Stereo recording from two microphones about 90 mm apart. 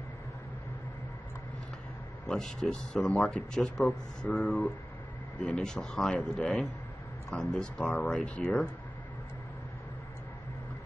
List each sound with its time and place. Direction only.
2.2 s speech: 5° left (ahead or behind)